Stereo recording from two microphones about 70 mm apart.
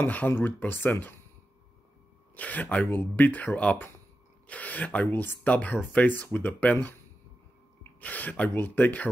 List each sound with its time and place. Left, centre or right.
0.0 s speech: left
2.3 s speech: left
8.0 s speech: left